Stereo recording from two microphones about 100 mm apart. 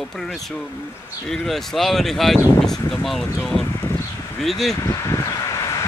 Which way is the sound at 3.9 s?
5° left (ahead or behind).